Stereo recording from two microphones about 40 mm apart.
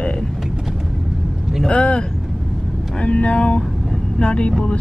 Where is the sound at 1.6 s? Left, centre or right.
Left.